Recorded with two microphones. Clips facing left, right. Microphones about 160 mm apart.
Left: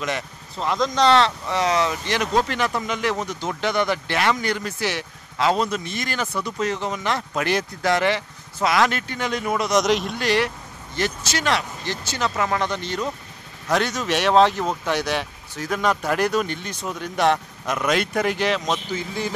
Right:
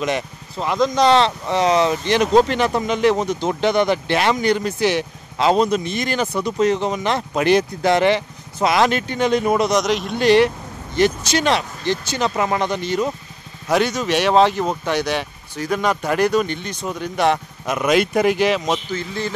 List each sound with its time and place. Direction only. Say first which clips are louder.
0.6 s speech: right 3 dB; 5° right (ahead or behind); by 9.7 s 25° right (ahead or behind)
9.7 s speech: right 1 dB; centre (ahead or behind)
10.1 s speech: right 8 dB; 25° right (ahead or behind)
18.9 s speech: right 2 dB; 10° left (ahead or behind)